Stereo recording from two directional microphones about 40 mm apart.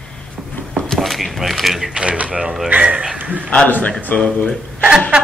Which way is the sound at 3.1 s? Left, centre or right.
Right.